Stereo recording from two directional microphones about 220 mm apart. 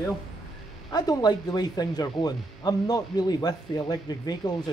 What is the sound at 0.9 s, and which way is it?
Speech, 20° left (ahead or behind).